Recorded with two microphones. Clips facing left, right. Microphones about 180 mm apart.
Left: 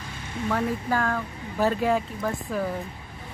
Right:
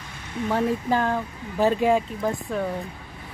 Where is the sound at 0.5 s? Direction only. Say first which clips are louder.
Right 3 dB; 25° right (ahead or behind).